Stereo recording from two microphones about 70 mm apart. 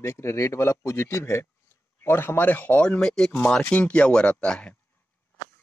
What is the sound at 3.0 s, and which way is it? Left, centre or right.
Speech, centre.